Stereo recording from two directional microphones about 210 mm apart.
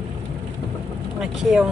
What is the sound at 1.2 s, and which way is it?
Vehicle, centre (ahead or behind).